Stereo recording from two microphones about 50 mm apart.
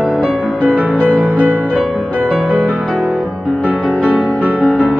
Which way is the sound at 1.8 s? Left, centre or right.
Centre.